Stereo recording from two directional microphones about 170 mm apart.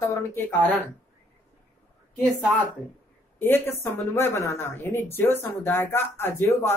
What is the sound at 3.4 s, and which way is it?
Speech, 15° left (ahead or behind).